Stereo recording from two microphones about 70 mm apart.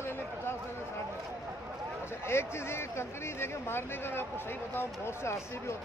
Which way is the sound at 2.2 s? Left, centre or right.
Left.